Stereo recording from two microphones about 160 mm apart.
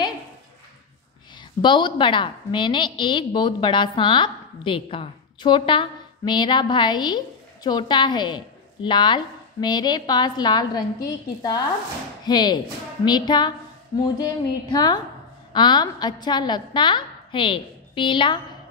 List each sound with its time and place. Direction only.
1.6 s a woman's voice: 30° left (ahead or behind)